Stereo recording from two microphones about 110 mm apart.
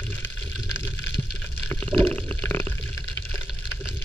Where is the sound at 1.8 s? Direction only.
15° left (ahead or behind).